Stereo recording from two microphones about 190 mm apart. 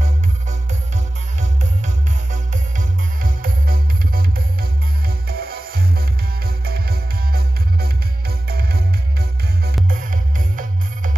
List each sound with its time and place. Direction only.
0.0 s music: 40° right (ahead or behind)
3.2 s music: 50° right (ahead or behind)